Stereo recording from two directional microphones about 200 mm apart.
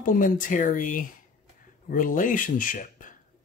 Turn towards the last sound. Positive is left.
turn(degrees=40)  # may be behind; listen again after turning